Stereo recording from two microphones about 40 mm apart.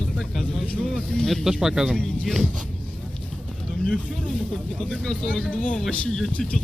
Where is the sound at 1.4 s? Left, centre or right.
Centre.